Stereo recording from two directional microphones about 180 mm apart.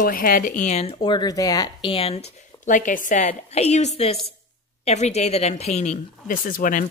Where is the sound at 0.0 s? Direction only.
50° left (ahead or behind).